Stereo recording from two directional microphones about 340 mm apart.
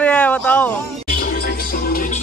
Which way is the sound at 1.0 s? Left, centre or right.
Left.